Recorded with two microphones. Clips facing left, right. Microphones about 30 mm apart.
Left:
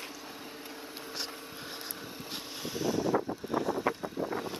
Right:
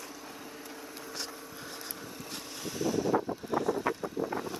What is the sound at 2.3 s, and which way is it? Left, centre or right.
Vehicle, centre.